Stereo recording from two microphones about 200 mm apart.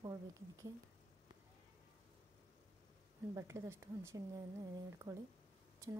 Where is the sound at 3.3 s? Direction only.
15° right (ahead or behind).